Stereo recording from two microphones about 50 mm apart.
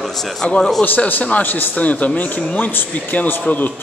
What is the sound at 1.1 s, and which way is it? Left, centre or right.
A man's voice, left.